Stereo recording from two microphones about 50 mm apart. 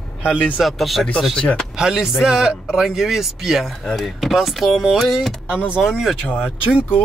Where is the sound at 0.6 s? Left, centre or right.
Centre.